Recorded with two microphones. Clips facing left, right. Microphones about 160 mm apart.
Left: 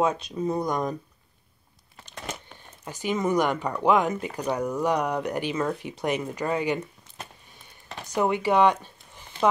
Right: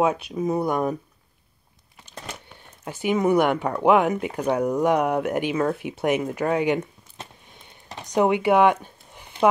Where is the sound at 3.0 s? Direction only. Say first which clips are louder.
Right 4 dB; 15° right (ahead or behind).